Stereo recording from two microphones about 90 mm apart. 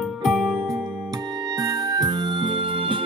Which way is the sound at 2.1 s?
60° right (ahead or behind).